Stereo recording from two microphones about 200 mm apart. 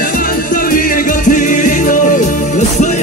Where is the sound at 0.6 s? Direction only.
45° left (ahead or behind).